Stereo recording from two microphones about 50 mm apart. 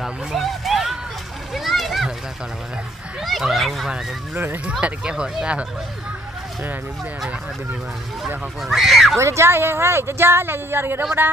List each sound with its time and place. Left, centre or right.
0.0 s a sound: centre
1.5 s splash: centre
3.3 s speech: centre
4.6 s speech: right
8.6 s speech: centre
9.1 s speech: right